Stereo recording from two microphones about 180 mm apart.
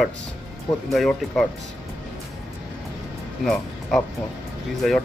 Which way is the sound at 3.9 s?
Centre (ahead or behind).